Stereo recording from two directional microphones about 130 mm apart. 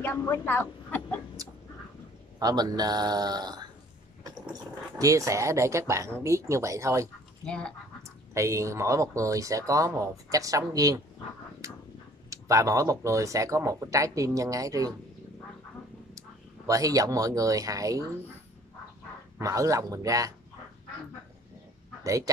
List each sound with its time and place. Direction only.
0.0 s speech: 15° left (ahead or behind)
2.3 s speech: 30° right (ahead or behind)
7.4 s speech: 10° left (ahead or behind)
8.3 s speech: 25° right (ahead or behind)
16.2 s speech: 25° right (ahead or behind)
19.3 s speech: 25° right (ahead or behind)
22.0 s speech: 25° right (ahead or behind)